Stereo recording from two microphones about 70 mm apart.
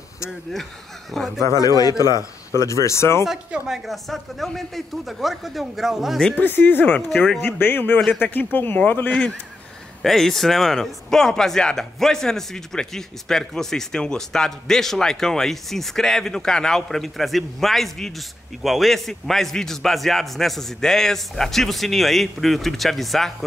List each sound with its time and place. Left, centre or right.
1.1 s speech: centre
1.4 s a man's voice: left
3.3 s speech: centre
6.4 s speech: left
10.0 s speech: centre